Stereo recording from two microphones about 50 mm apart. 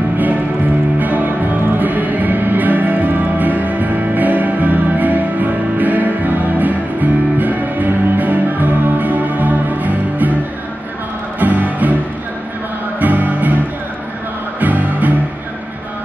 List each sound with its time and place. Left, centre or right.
0.9 s music: right
11.3 s music: right
13.0 s music: right
14.6 s music: right